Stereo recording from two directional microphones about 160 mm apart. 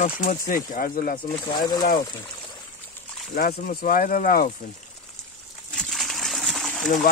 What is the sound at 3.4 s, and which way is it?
Speech, 65° left (ahead or behind).